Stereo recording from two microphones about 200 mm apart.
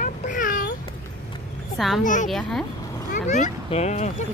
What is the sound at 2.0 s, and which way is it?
Speech, 40° left (ahead or behind).